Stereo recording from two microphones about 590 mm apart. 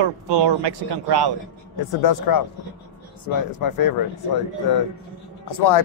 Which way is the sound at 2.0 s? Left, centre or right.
Left.